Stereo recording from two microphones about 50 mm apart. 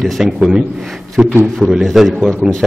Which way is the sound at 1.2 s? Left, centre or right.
Right.